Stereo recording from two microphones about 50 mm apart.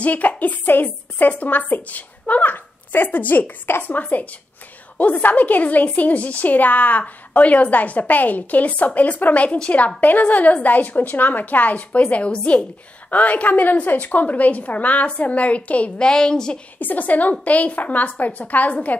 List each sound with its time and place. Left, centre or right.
0.0 s a woman's voice: left
16.1 s a woman's voice: centre
16.8 s a woman's voice: left